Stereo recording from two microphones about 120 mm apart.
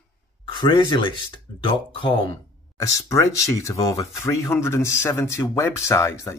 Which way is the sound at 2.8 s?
25° left (ahead or behind).